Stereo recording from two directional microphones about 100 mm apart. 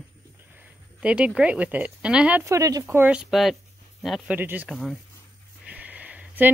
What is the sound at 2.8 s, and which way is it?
Speech, 20° right (ahead or behind).